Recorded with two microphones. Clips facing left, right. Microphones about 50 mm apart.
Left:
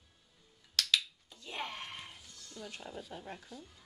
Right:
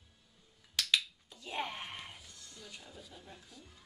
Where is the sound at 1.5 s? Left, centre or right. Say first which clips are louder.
Right 2 dB; centre.